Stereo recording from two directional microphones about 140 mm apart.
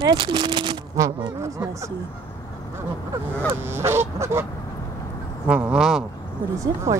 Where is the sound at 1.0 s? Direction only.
20° right (ahead or behind).